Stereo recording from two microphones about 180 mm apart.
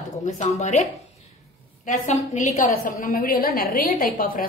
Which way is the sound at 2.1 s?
45° left (ahead or behind).